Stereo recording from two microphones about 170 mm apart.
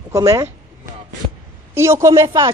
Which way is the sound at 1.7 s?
15° right (ahead or behind).